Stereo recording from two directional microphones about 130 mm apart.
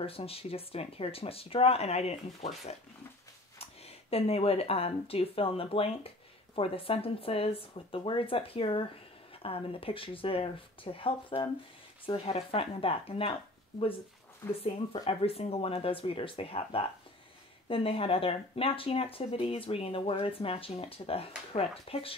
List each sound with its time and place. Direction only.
0.0 s speech: 50° left (ahead or behind)
4.1 s speech: 50° left (ahead or behind)
14.4 s speech: 20° left (ahead or behind)
15.0 s speech: 50° left (ahead or behind)